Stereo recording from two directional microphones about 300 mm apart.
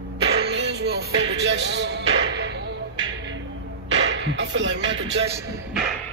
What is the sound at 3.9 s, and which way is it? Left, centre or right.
Speech, right.